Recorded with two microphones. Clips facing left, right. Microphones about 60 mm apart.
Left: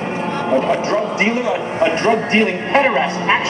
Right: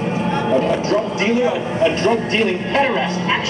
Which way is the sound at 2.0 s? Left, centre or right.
Left.